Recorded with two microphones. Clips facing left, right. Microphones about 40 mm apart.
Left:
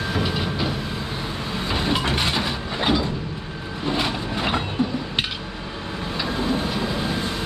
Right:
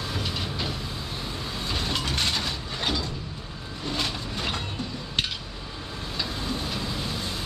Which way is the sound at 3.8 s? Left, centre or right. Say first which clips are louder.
Left 6 dB; left.